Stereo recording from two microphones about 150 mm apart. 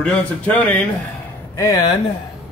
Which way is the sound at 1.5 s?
25° left (ahead or behind).